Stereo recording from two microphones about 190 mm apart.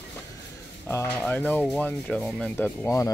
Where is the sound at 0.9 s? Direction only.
10° left (ahead or behind).